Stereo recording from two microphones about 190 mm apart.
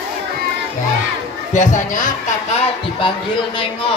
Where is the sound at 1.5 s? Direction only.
40° left (ahead or behind).